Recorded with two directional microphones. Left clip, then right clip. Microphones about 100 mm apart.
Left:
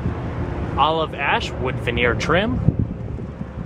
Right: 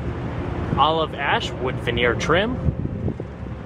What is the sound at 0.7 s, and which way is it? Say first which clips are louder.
Speech: even; centre (ahead or behind).